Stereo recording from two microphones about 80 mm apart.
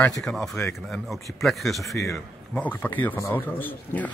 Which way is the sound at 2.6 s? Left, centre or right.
Left.